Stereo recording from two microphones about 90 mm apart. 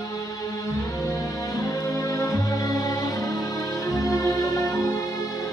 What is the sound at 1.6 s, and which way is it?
Music, 45° left (ahead or behind).